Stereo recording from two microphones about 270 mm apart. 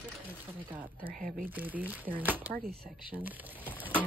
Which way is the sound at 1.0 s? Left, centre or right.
Right.